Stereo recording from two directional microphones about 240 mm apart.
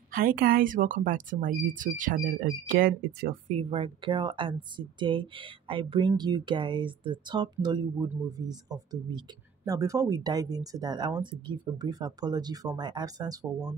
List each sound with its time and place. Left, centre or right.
0.1 s speech: right; by 13.7 s centre